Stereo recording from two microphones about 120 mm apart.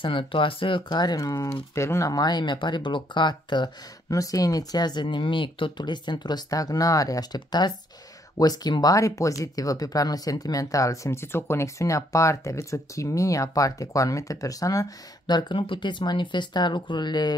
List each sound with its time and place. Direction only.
0.0 s speech: 45° left (ahead or behind)